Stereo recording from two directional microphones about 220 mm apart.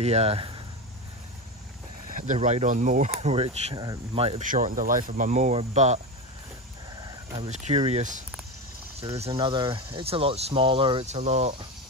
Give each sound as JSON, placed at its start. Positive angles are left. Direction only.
{"t": 0.0, "sound": "speech", "side_deg": -30}
{"t": 2.0, "sound": "speech", "side_deg": -35}
{"t": 7.0, "sound": "speech", "side_deg": -20}